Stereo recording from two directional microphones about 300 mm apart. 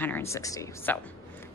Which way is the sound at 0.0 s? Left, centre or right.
Centre.